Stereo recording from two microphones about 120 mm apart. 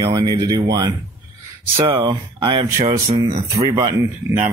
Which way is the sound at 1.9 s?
50° right (ahead or behind).